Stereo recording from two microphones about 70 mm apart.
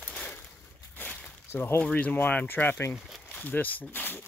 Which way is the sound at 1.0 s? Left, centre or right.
Left.